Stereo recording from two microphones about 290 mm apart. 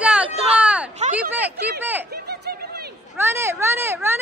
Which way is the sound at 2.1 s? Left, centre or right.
Right.